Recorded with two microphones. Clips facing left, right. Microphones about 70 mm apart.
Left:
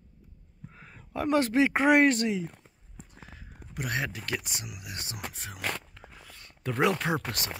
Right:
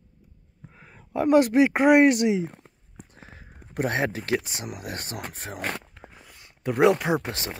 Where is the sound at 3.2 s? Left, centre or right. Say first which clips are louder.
Right 1 dB; right.